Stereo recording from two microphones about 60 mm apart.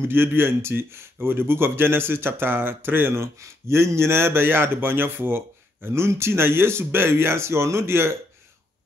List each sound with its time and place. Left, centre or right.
0.1 s speech: right